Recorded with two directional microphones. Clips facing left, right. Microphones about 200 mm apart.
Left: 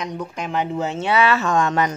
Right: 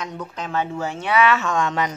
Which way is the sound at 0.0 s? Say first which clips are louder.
Left 3 dB; 15° left (ahead or behind).